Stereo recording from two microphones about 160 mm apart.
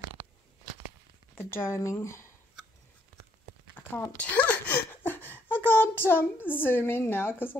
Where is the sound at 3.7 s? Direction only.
10° left (ahead or behind).